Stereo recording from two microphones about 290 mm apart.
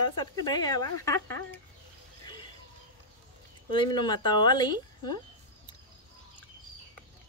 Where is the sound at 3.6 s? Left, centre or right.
Centre.